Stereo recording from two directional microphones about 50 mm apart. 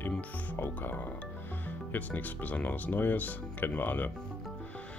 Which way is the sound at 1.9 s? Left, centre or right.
Left.